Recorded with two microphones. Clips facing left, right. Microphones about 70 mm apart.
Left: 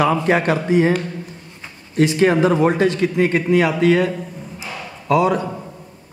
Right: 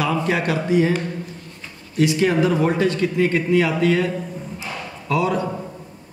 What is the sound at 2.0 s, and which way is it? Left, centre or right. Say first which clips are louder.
Speech: left 3 dB; left.